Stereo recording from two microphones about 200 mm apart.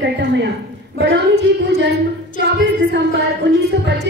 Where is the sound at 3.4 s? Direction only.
65° right (ahead or behind).